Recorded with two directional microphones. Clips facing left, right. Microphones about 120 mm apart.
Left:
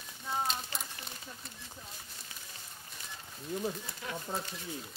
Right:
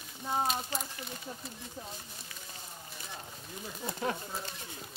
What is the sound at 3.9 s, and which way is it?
Speech, 45° right (ahead or behind).